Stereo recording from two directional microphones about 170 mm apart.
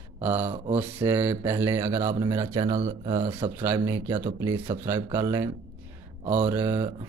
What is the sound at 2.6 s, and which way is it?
Speech, 45° right (ahead or behind).